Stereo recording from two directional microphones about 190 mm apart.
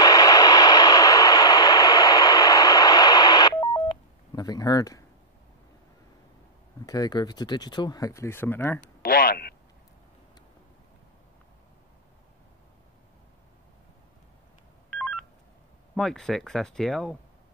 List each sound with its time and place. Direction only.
0.0 s vehicle: 20° left (ahead or behind)
6.9 s speech: 20° left (ahead or behind)
9.0 s a sound: 55° left (ahead or behind)
14.9 s telephone dialing: 5° left (ahead or behind)
15.9 s speech: centre (ahead or behind)